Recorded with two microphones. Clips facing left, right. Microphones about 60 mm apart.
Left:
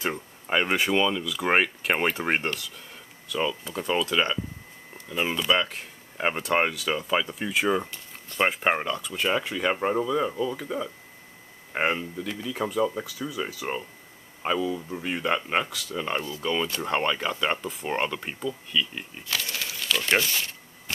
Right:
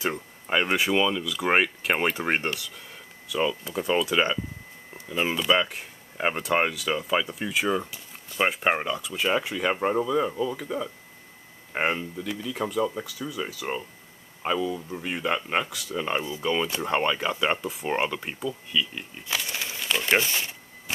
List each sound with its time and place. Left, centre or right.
0.0 s speech: centre
19.2 s a sound: centre
20.2 s speech: right